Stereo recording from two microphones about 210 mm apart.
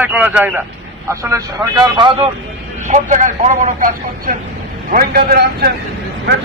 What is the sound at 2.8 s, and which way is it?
A man's voice, 35° right (ahead or behind).